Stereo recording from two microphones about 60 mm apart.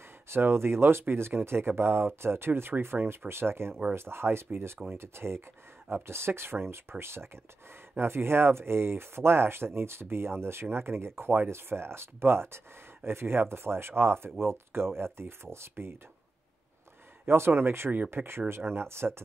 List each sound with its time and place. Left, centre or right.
0.3 s speech: right
17.5 s speech: right